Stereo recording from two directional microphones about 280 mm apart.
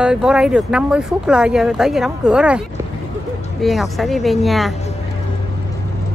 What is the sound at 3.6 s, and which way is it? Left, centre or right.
Speech, centre.